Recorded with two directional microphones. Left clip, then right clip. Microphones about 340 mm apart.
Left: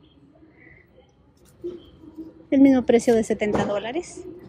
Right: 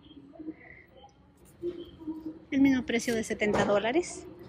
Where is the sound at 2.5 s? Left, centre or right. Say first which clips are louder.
Left 10 dB; centre.